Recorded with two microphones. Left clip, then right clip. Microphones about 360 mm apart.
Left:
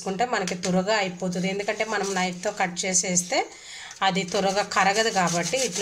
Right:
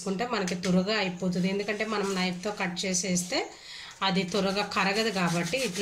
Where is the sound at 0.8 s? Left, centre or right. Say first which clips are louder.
Left 5 dB; centre.